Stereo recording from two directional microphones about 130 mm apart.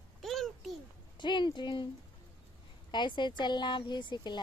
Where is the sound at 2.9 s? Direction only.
35° left (ahead or behind).